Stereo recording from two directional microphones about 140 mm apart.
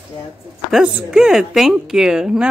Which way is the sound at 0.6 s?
5° right (ahead or behind).